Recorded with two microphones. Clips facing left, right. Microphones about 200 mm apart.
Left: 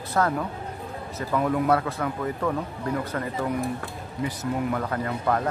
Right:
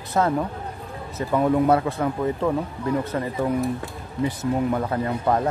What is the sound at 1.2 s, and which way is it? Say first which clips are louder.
Speech: right 4 dB; 25° right (ahead or behind).